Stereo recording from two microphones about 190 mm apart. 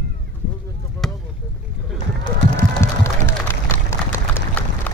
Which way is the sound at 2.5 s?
15° left (ahead or behind).